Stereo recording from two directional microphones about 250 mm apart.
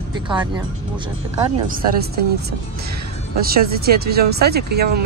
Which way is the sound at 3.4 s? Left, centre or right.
Right.